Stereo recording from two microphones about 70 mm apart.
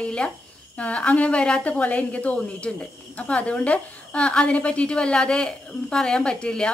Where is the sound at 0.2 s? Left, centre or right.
Centre.